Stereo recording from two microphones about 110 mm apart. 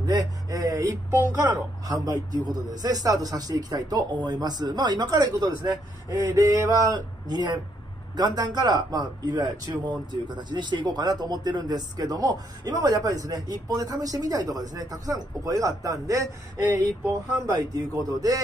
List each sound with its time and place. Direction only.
0.0 s speech: 35° right (ahead or behind)
1.1 s a woman's voice: 20° right (ahead or behind)
1.9 s speech: 35° right (ahead or behind)